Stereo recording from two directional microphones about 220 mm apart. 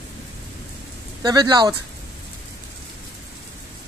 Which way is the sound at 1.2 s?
20° right (ahead or behind).